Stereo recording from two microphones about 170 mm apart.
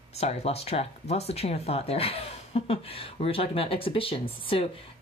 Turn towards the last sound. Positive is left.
turn(degrees=30)  # may be behind; listen again after turning